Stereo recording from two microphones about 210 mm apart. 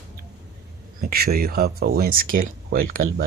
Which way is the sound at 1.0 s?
45° right (ahead or behind).